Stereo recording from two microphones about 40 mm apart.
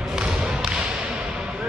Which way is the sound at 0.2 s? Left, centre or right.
Centre.